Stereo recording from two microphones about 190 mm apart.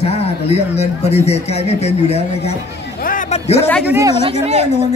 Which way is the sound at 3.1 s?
40° left (ahead or behind).